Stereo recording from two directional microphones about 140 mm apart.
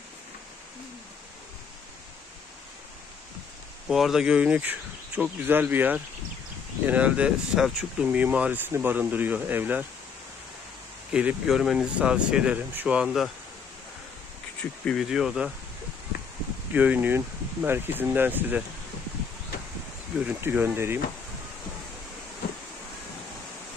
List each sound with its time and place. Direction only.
3.8 s speech: centre (ahead or behind)
11.1 s speech: 5° right (ahead or behind)
14.6 s speech: 5° left (ahead or behind)
16.7 s speech: 10° right (ahead or behind)
20.2 s speech: 10° right (ahead or behind)